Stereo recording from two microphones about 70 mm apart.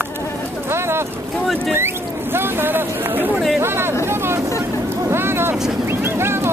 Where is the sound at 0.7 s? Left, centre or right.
Right.